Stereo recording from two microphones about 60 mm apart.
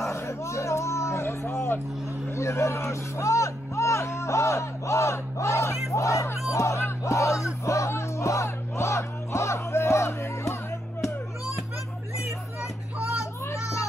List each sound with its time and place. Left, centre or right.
0.1 s a sound: left
5.9 s crowd: left
13.2 s children playing: left